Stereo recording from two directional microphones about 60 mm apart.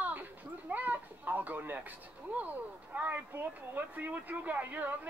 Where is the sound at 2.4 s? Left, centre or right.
Right.